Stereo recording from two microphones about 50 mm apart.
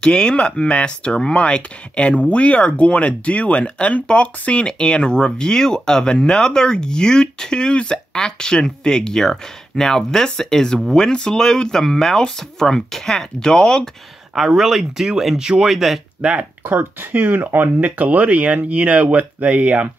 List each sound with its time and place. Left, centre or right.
0.0 s speech: centre
14.3 s speech: centre
16.2 s speech: centre
16.6 s speech: right